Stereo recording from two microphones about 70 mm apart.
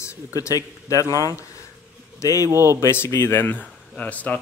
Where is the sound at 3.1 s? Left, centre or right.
Left.